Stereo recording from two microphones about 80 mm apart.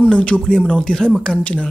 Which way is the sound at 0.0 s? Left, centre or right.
Centre.